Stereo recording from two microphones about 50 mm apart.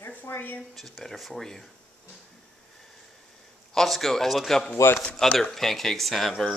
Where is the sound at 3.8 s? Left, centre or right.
Centre.